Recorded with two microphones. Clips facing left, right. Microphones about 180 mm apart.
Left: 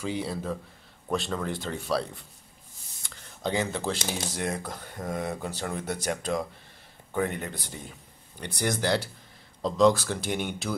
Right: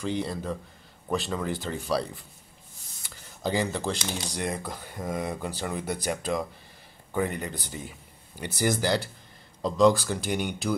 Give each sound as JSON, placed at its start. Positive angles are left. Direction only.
{"t": 0.0, "sound": "speech", "side_deg": 5}
{"t": 3.0, "sound": "a sound", "side_deg": 0}
{"t": 4.1, "sound": "speech", "side_deg": 0}